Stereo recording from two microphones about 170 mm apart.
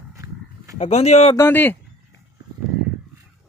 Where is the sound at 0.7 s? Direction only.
40° left (ahead or behind).